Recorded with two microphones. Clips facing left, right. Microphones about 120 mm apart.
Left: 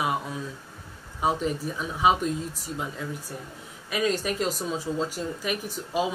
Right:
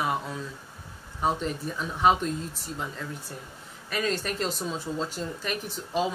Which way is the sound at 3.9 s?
5° left (ahead or behind).